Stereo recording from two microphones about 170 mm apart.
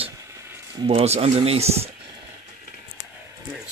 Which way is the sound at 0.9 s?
35° right (ahead or behind).